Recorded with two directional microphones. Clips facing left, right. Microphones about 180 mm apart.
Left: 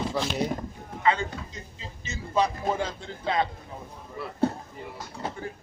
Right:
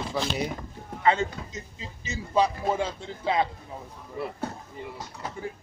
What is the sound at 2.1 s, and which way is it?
A man's voice, 10° right (ahead or behind).